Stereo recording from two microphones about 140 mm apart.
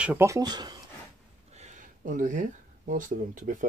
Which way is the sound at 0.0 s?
10° right (ahead or behind).